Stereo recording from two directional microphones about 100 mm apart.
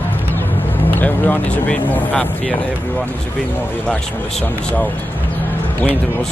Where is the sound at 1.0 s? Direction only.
15° left (ahead or behind).